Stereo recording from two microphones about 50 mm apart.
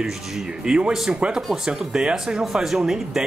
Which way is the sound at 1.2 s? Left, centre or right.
Right.